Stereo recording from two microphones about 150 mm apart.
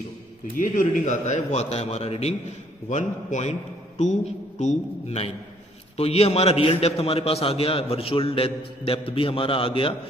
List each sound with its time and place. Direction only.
0.6 s a man's voice: 60° left (ahead or behind); by 9.9 s 35° left (ahead or behind)